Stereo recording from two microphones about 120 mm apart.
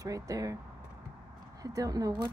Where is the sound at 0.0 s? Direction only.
30° right (ahead or behind).